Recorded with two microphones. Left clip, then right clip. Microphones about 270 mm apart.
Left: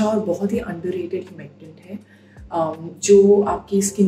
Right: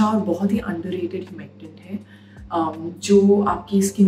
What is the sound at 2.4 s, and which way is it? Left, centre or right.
Speech, centre.